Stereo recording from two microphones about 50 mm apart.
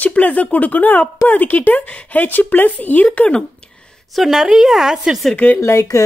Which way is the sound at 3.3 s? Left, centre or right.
Centre.